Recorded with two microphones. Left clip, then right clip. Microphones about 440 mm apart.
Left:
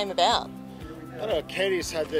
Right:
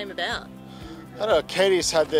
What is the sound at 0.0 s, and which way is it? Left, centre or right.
Speech, left.